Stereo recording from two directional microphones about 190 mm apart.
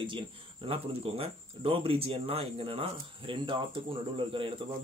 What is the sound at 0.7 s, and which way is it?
Speech, 30° right (ahead or behind).